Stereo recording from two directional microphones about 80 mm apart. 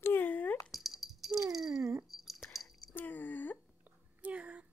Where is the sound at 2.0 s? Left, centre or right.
Centre.